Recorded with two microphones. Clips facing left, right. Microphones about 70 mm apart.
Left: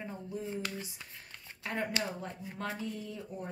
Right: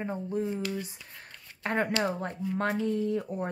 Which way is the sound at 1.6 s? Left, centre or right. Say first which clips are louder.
Right 7 dB; right.